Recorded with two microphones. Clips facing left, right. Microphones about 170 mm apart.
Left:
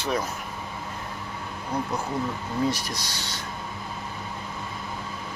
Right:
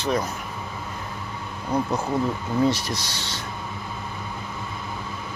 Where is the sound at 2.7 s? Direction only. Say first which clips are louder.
Right 3 dB; 25° right (ahead or behind).